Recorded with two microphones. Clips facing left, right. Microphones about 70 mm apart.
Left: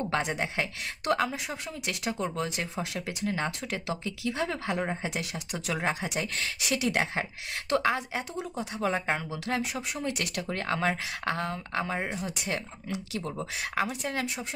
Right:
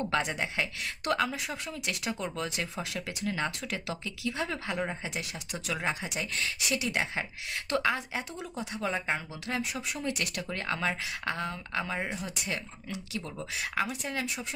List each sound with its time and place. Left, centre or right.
0.0 s speech: left
12.0 s speech: centre
12.4 s speech: left